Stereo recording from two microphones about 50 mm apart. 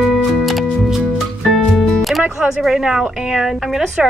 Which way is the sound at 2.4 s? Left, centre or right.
Centre.